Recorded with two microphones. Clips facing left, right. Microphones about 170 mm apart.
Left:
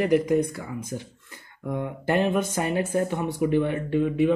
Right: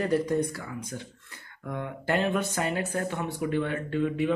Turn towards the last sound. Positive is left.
turn(degrees=15)  # may be behind; listen again after turning